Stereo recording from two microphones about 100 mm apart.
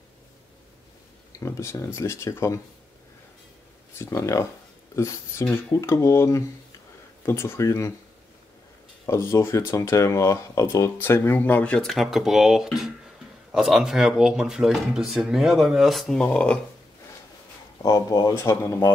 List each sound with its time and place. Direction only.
1.4 s speech: 30° left (ahead or behind)
4.0 s speech: 30° left (ahead or behind)
9.0 s speech: 30° left (ahead or behind); by 16.3 s centre (ahead or behind)
16.3 s speech: 10° left (ahead or behind)
17.8 s speech: 40° left (ahead or behind)
18.3 s speech: 25° left (ahead or behind)